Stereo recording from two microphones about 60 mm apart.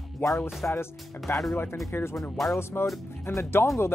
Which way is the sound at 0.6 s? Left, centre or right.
Left.